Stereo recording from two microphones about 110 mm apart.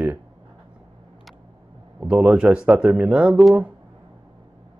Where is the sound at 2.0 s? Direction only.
5° right (ahead or behind).